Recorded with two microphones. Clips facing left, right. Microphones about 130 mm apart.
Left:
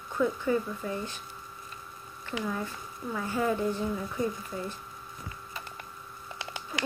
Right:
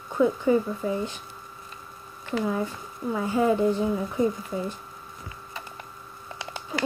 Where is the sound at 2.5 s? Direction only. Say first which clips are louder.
Right 6 dB; 20° right (ahead or behind).